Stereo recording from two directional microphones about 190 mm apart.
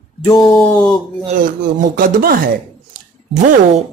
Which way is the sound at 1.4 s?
45° right (ahead or behind).